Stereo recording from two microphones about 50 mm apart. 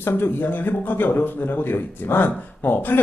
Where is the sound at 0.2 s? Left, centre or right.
Left.